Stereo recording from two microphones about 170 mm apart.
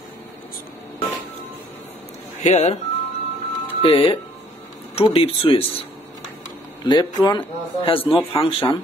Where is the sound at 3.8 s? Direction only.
30° left (ahead or behind).